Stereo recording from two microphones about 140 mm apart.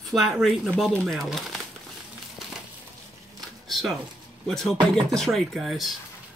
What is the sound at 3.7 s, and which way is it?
Speech, centre (ahead or behind).